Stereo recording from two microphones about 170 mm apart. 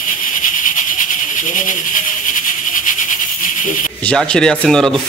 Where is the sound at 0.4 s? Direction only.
50° left (ahead or behind).